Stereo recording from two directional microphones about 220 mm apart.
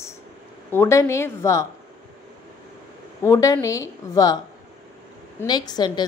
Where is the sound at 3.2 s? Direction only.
15° left (ahead or behind).